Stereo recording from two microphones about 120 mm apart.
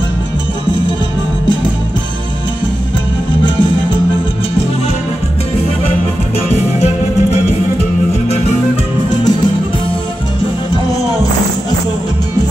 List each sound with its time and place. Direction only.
6.5 s music: 60° left (ahead or behind)